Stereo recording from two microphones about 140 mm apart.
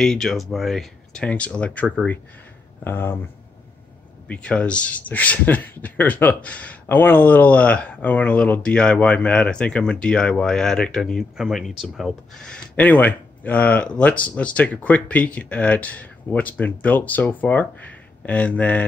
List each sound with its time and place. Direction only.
0.0 s speech: 5° left (ahead or behind)
4.3 s speech: 10° left (ahead or behind)